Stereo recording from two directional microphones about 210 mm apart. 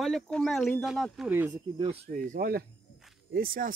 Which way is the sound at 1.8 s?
25° right (ahead or behind).